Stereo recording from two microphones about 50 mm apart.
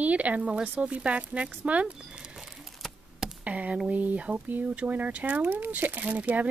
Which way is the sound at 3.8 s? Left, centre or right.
Right.